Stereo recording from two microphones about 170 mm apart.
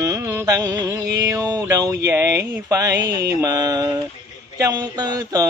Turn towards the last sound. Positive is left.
turn(degrees=-20)  # may be behind; listen again after turning